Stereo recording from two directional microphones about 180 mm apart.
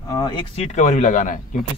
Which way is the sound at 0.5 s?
40° left (ahead or behind).